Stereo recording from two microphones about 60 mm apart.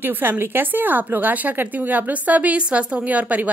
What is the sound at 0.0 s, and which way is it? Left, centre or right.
Speech, right.